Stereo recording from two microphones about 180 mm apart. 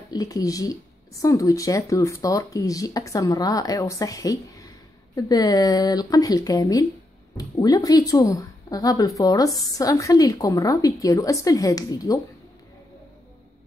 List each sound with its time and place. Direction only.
0.1 s speech: 20° left (ahead or behind)